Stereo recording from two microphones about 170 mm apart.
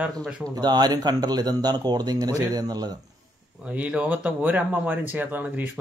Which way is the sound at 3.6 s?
5° right (ahead or behind).